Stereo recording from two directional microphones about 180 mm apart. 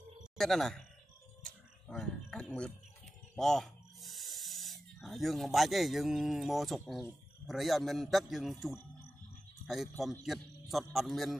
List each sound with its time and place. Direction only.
0.4 s a man's voice: centre (ahead or behind)
1.4 s a sound: 5° left (ahead or behind)
3.3 s a man's voice: centre (ahead or behind)